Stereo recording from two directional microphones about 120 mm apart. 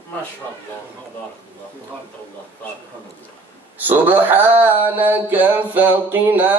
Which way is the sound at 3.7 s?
15° right (ahead or behind).